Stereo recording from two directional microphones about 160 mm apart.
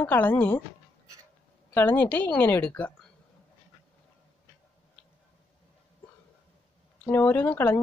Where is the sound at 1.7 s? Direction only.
10° left (ahead or behind).